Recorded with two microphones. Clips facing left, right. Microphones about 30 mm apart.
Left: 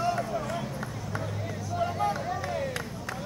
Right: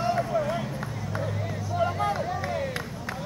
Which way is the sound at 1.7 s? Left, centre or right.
Centre.